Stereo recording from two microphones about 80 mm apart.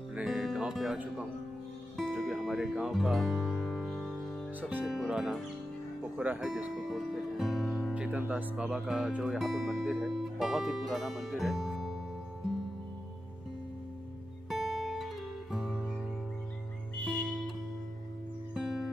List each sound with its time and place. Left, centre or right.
0.1 s music: centre
2.0 s music: centre
4.6 s speech: right
4.8 s speech: centre
6.1 s speech: centre
6.7 s music: centre
7.9 s music: centre
8.4 s speech: centre
14.5 s guitar: centre
18.5 s music: centre